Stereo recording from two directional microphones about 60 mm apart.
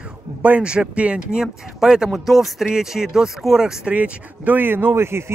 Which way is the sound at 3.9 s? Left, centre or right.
Right.